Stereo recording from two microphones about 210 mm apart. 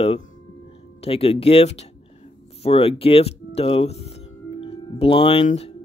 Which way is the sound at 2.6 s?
30° left (ahead or behind).